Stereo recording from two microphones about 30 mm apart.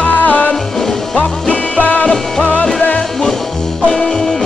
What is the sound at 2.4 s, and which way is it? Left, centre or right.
Music, left.